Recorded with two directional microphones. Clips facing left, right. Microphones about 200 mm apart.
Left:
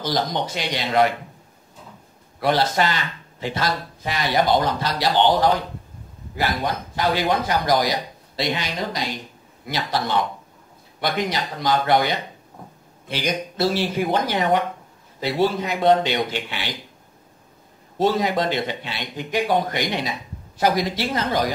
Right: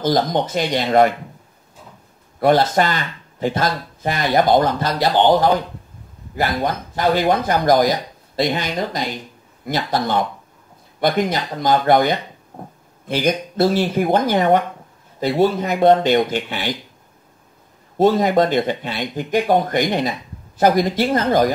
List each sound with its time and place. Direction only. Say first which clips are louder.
0.0 s speech: right 6 dB; 50° right (ahead or behind)
2.4 s speech: right 5 dB; 50° right (ahead or behind)
6.3 s speech: right 3 dB; 50° right (ahead or behind)
17.9 s speech: right 6 dB; 50° right (ahead or behind)